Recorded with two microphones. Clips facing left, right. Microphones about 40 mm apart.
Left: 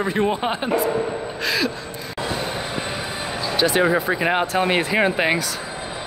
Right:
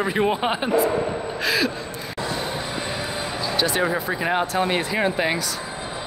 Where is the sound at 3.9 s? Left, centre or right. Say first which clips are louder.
Left 4 dB; centre.